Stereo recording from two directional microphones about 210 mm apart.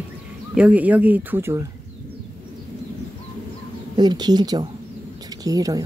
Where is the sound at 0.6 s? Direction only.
5° right (ahead or behind).